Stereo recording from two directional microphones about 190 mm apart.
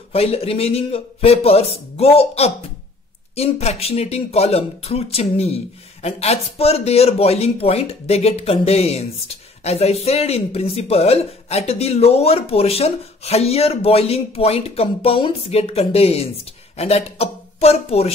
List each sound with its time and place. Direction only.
0.1 s speech: 30° left (ahead or behind)